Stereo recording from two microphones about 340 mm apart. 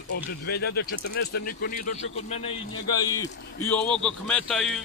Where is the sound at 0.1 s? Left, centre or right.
Left.